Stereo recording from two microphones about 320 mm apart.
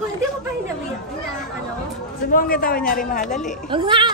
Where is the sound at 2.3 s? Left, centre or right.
Left.